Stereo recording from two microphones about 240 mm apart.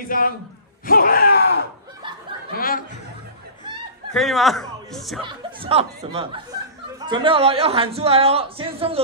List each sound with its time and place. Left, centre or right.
0.1 s a man's voice: left
2.5 s a sound: left
4.1 s speech: centre
5.2 s speech: right